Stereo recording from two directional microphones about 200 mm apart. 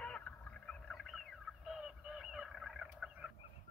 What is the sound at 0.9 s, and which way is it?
Fowl, centre (ahead or behind).